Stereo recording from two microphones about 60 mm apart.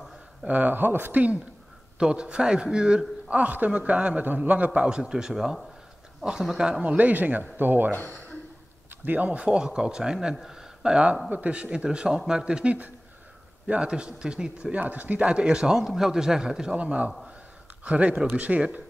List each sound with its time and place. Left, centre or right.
0.5 s a man's voice: right
2.0 s a man's voice: centre
6.8 s a man's voice: right
7.9 s speech: left
9.0 s a man's voice: right
14.8 s a man's voice: right; by 16.7 s centre
16.7 s a man's voice: right